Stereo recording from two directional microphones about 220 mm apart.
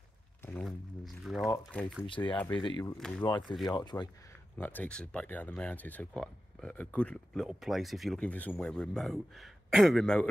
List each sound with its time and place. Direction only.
0.4 s a sound: 10° left (ahead or behind)
0.7 s speech: centre (ahead or behind)
2.0 s speech: 20° left (ahead or behind)
3.0 s speech: 5° left (ahead or behind)
3.6 s speech: 20° left (ahead or behind)
4.6 s speech: 10° left (ahead or behind)